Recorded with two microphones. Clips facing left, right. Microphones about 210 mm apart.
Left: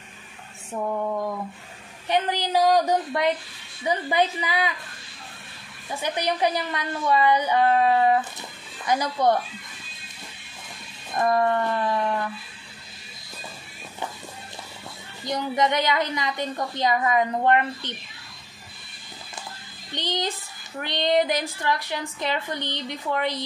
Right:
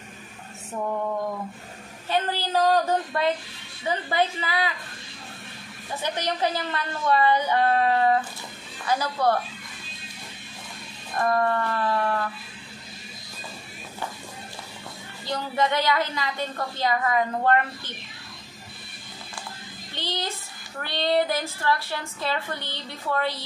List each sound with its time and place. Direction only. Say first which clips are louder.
2.0 s a woman's voice: left 2 dB; 15° left (ahead or behind)
6.0 s a woman's voice: left 2 dB; 10° left (ahead or behind)
11.1 s a woman's voice: left 2 dB; 20° left (ahead or behind)
15.2 s a woman's voice: left 2 dB; 15° left (ahead or behind)
20.0 s a woman's voice: left 3 dB; 20° left (ahead or behind)